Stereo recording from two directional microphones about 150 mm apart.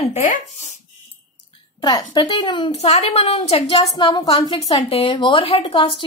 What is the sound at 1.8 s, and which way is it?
Speech, 25° left (ahead or behind).